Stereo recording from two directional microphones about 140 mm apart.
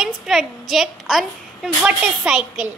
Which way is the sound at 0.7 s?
Centre (ahead or behind).